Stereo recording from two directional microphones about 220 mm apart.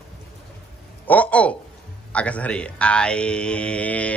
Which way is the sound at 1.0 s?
5° left (ahead or behind).